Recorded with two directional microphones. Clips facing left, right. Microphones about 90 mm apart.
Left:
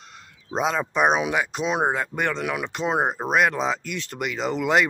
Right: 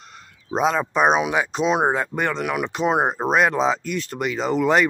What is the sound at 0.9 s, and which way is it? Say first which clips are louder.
Speech: right 1 dB; 20° right (ahead or behind).